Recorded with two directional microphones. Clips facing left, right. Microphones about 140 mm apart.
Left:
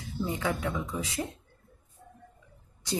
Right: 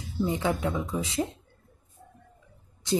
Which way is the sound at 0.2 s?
20° right (ahead or behind).